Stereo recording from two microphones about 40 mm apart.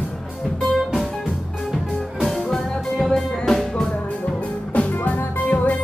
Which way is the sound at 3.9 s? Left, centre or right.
Left.